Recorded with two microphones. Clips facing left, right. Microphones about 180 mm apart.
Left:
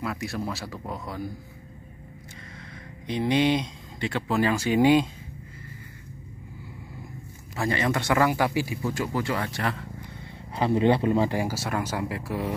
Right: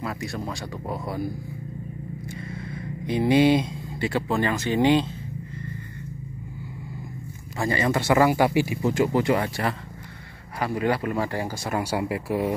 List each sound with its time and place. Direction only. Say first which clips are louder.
0.0 s speech: even; centre (ahead or behind)
0.9 s speech: right 6 dB; 10° right (ahead or behind)
2.7 s speech: right 4 dB; 10° right (ahead or behind); by 5.0 s 10° left (ahead or behind)
7.5 s speech: right 2 dB; centre (ahead or behind)
10.6 s speech: left 3 dB; 25° left (ahead or behind); by 11.7 s 5° left (ahead or behind)
11.7 s speech: right 3 dB; 10° right (ahead or behind)